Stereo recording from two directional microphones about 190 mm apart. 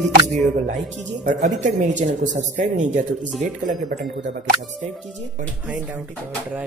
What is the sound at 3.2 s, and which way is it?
Speech, 5° right (ahead or behind).